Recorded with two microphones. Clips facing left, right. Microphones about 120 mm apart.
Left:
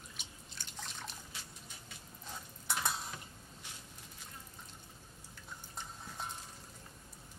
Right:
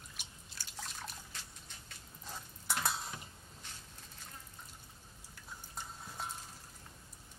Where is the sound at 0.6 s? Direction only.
5° right (ahead or behind).